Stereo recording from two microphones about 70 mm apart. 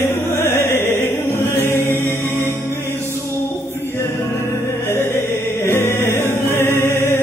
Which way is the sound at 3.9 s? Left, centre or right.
Left.